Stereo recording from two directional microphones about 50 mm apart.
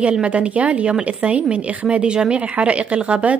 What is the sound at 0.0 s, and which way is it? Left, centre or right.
Speech, right.